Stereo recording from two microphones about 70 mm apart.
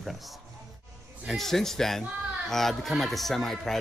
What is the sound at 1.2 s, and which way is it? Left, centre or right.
A man's voice, centre.